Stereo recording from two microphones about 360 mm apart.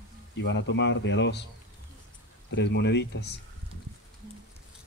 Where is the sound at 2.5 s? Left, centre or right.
Left.